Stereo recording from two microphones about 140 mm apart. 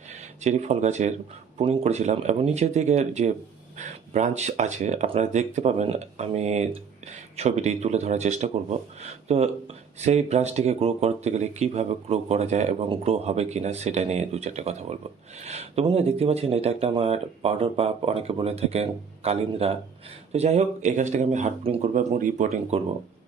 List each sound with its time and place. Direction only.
0.4 s speech: 55° right (ahead or behind)
3.7 s a sound: 55° right (ahead or behind)
4.4 s speech: 55° right (ahead or behind)
12.8 s speech: 40° right (ahead or behind)
21.9 s speech: 70° right (ahead or behind)